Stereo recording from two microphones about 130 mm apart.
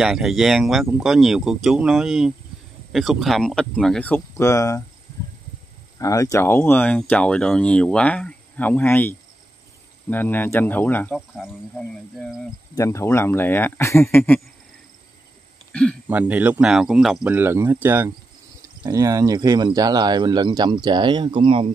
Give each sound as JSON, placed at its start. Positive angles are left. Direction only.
{"t": 0.0, "sound": "speech", "side_deg": -5}
{"t": 4.4, "sound": "speech", "side_deg": 20}
{"t": 5.9, "sound": "speech", "side_deg": 25}
{"t": 12.7, "sound": "speech", "side_deg": 20}
{"t": 15.7, "sound": "throat clearing", "side_deg": 5}
{"t": 16.1, "sound": "speech", "side_deg": -10}
{"t": 17.3, "sound": "speech", "side_deg": -15}
{"t": 18.9, "sound": "speech", "side_deg": -25}